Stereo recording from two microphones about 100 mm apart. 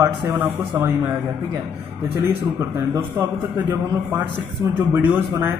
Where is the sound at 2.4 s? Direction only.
20° right (ahead or behind).